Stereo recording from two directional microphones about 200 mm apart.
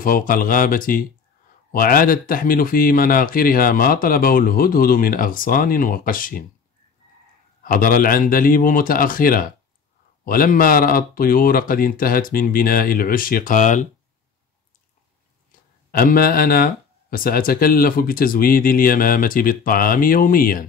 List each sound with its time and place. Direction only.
0.0 s speech: 45° left (ahead or behind)
7.6 s speech: 45° left (ahead or behind)
15.9 s speech: 45° left (ahead or behind)